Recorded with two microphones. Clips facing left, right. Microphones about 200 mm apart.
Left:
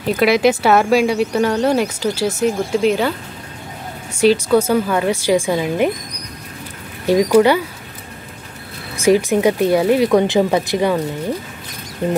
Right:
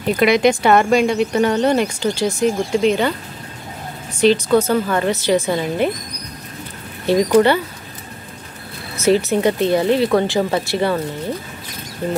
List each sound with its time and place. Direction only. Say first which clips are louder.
0.0 s a woman's voice: even; centre (ahead or behind)
7.1 s a woman's voice: left 1 dB; 10° left (ahead or behind)
9.0 s a woman's voice: left 2 dB; 15° left (ahead or behind)